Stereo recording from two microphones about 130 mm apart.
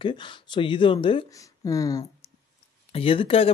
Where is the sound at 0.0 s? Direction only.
40° left (ahead or behind).